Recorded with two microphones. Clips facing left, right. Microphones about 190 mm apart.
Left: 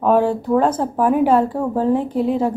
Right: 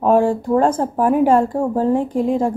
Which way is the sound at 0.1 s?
45° right (ahead or behind).